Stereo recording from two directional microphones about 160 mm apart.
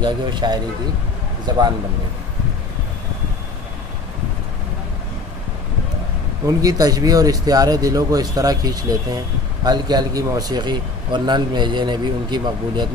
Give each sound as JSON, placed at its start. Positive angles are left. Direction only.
{"t": 0.0, "sound": "a man's voice", "side_deg": -30}
{"t": 6.4, "sound": "a man's voice", "side_deg": -25}